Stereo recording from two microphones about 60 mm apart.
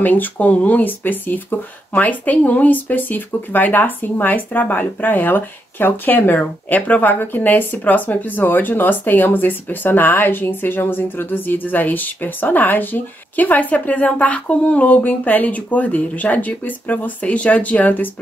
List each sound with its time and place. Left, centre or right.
0.0 s speech: left